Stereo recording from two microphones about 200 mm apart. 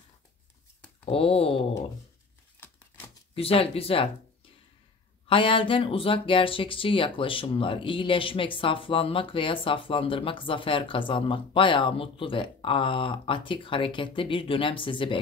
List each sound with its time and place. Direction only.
1.0 s speech: 30° left (ahead or behind)
3.3 s speech: 30° left (ahead or behind)
5.3 s speech: 25° left (ahead or behind)